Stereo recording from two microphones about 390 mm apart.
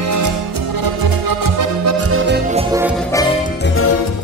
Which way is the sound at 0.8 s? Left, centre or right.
Right.